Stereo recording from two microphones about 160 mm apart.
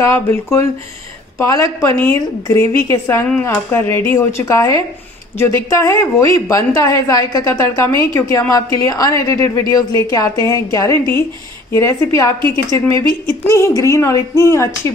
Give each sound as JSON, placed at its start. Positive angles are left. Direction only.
{"t": 0.0, "sound": "speech", "side_deg": 15}